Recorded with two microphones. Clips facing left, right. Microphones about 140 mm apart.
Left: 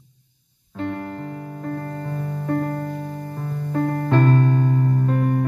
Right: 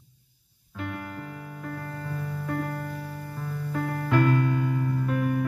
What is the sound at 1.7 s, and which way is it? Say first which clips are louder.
Music: left 7 dB; 40° left (ahead or behind).